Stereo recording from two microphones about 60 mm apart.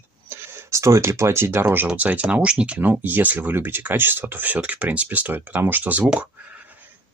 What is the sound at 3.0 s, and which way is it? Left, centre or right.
Speech, right.